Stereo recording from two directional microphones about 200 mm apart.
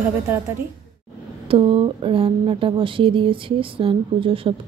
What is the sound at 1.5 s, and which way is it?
Speech, 25° right (ahead or behind).